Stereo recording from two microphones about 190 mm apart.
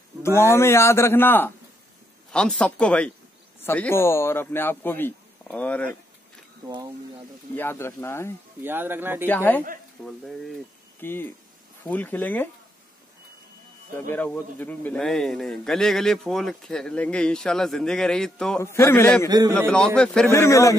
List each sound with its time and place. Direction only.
0.4 s a man's voice: 15° left (ahead or behind)
7.5 s a man's voice: 10° left (ahead or behind)
8.6 s speech: 10° right (ahead or behind)
9.3 s a man's voice: 10° left (ahead or behind)
13.9 s a man's voice: 10° left (ahead or behind)
18.6 s a man's voice: 15° left (ahead or behind)
19.2 s a man's voice: 20° right (ahead or behind)
20.0 s a man's voice: 10° left (ahead or behind)